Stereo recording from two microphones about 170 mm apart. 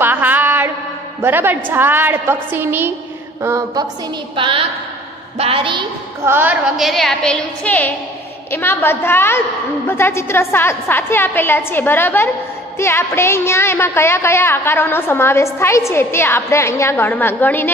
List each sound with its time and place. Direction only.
0.0 s mantra: 10° right (ahead or behind)
1.2 s a woman's voice: 10° right (ahead or behind)
3.4 s a sound: 20° right (ahead or behind)
4.4 s a woman's voice: 30° right (ahead or behind)
6.2 s a woman's voice: 10° right (ahead or behind); by 17.6 s 10° left (ahead or behind)